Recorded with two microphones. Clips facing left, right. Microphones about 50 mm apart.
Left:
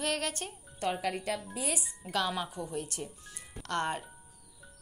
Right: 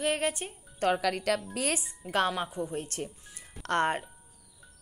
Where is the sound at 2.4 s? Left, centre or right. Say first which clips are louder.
Right 4 dB; right.